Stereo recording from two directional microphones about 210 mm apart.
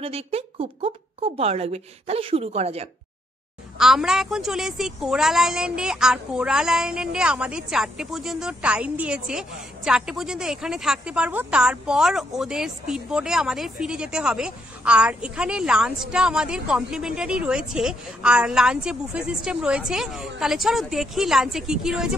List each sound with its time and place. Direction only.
0.0 s speech: 30° right (ahead or behind)
3.7 s a woman's voice: centre (ahead or behind)